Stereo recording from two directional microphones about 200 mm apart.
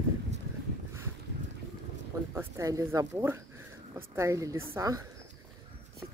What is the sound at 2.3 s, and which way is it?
Speech, 15° right (ahead or behind).